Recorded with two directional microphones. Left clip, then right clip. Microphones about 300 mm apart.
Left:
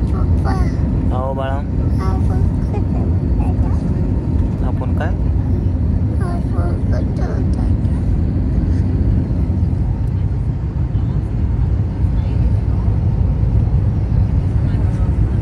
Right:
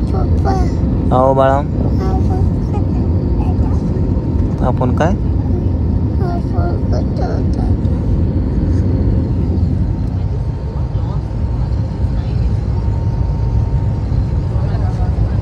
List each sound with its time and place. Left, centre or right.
0.5 s vehicle: centre
1.1 s vehicle: right
4.6 s vehicle: right